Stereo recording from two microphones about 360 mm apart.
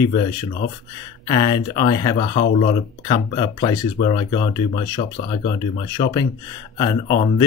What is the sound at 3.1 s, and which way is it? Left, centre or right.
Speech, centre.